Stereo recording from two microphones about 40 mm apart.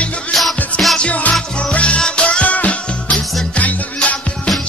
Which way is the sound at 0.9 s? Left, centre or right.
Left.